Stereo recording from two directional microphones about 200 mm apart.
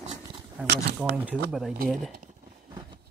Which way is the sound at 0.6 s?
5° right (ahead or behind).